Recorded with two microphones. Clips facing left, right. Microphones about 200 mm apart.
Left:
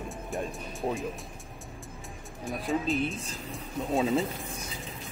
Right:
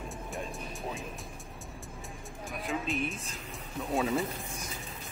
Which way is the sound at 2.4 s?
Centre (ahead or behind).